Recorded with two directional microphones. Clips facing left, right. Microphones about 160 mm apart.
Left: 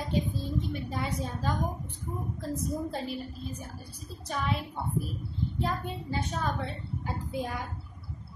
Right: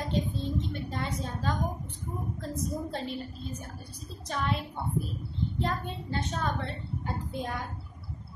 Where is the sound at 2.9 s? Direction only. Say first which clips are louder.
Even; 5° left (ahead or behind).